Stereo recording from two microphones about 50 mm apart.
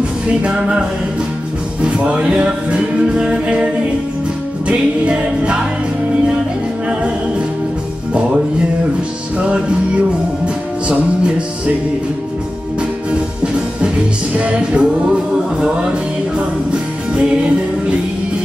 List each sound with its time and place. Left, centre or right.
0.3 s music: right
9.4 s music: right
13.1 s music: right
16.3 s music: right